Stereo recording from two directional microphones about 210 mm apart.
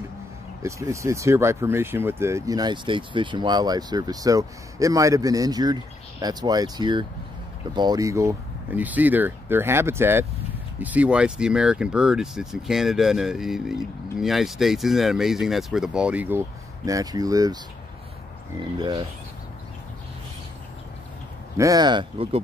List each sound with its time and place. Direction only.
0.6 s speech: 15° right (ahead or behind)
18.6 s speech: 20° right (ahead or behind)
21.5 s speech: 15° right (ahead or behind)